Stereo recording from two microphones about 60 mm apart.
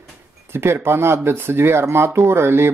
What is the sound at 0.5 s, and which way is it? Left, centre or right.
Speech, right.